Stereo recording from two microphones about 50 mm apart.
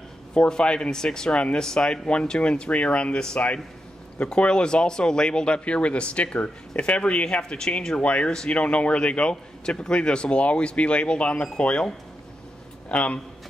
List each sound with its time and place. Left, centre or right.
0.3 s a man's voice: centre
8.0 s a man's voice: left